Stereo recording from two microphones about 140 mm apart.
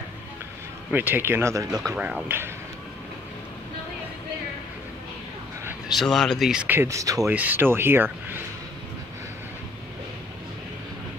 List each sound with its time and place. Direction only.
0.9 s speech: 15° right (ahead or behind)
2.0 s speech: 10° right (ahead or behind)
5.9 s speech: 5° left (ahead or behind); by 7.2 s 25° right (ahead or behind)
7.2 s speech: 10° right (ahead or behind)